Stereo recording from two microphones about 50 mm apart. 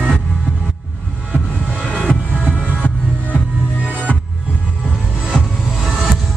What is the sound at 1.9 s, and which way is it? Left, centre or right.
Music, left.